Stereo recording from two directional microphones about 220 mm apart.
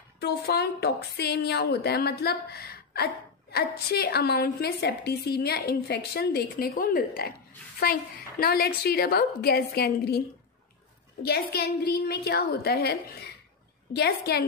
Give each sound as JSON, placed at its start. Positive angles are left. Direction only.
{"t": 0.2, "sound": "a woman's voice", "side_deg": 50}
{"t": 11.2, "sound": "a woman's voice", "side_deg": 45}